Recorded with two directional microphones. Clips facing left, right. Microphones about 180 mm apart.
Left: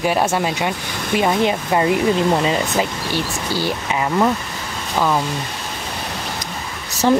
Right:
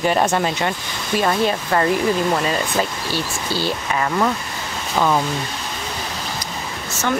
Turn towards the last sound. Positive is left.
turn(degrees=35)  # may be behind; listen again after turning